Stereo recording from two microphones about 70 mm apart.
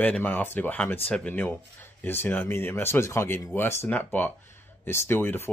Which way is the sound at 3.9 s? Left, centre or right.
Left.